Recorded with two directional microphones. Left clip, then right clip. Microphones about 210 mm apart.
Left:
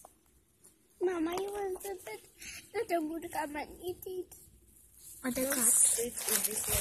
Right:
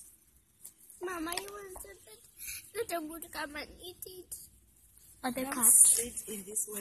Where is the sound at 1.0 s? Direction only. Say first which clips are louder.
Left 5 dB; 45° right (ahead or behind).